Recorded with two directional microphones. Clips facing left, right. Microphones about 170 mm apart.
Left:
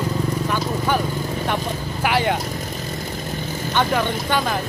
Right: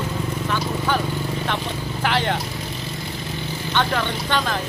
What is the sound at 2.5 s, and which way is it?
Vehicle, 45° left (ahead or behind).